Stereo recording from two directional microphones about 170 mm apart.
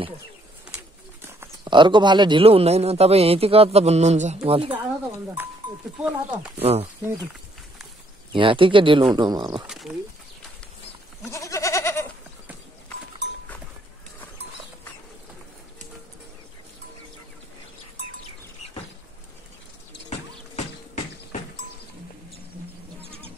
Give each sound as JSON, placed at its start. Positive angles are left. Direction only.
{"t": 0.7, "sound": "bird", "side_deg": -10}
{"t": 1.6, "sound": "a man's voice", "side_deg": -30}
{"t": 6.0, "sound": "speech", "side_deg": -5}
{"t": 6.6, "sound": "a man's voice", "side_deg": -35}
{"t": 8.3, "sound": "speech", "side_deg": -30}
{"t": 9.7, "sound": "speech", "side_deg": -5}
{"t": 11.2, "sound": "goat", "side_deg": 20}
{"t": 20.1, "sound": "a sound", "side_deg": 40}
{"t": 23.0, "sound": "bird", "side_deg": -35}